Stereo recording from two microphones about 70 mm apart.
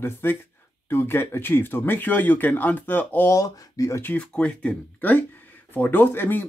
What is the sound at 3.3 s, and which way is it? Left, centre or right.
Speech, left.